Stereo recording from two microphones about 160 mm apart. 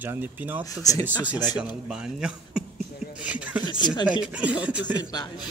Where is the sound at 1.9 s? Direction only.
5° right (ahead or behind).